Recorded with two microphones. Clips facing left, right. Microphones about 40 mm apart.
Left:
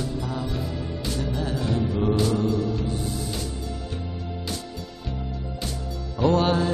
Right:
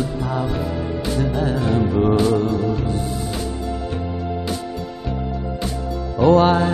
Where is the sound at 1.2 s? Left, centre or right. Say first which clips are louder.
Right 7 dB; right.